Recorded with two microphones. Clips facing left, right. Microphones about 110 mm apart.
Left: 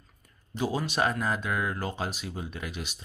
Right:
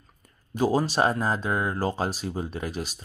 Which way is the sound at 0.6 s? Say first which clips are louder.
Right 5 dB; 40° right (ahead or behind).